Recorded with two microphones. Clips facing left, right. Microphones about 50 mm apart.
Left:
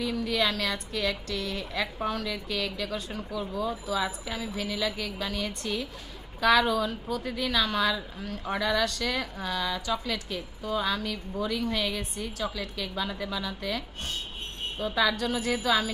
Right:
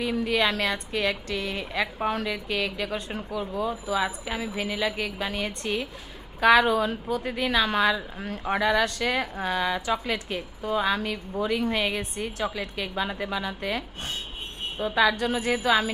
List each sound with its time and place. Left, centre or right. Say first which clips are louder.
0.0 s a woman's voice: right 3 dB; right